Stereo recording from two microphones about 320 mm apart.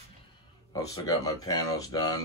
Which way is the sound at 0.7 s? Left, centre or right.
Centre.